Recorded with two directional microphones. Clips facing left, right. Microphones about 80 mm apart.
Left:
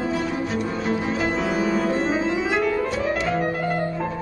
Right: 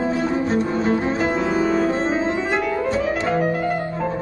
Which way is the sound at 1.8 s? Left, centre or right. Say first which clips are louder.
Right 2 dB; right.